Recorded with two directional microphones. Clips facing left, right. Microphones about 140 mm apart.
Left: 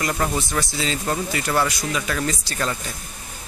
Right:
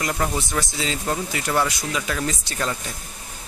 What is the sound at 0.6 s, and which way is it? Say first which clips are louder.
Speech: left 1 dB; 10° right (ahead or behind).